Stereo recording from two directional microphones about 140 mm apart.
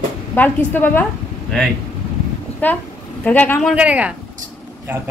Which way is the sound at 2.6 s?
10° left (ahead or behind).